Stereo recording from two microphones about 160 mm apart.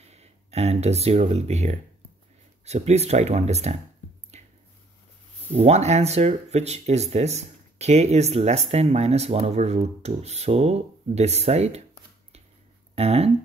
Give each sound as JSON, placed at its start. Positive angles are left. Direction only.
{"t": 0.0, "sound": "speech", "side_deg": -40}
{"t": 4.3, "sound": "squish", "side_deg": -45}
{"t": 5.5, "sound": "speech", "side_deg": -45}
{"t": 12.9, "sound": "speech", "side_deg": -40}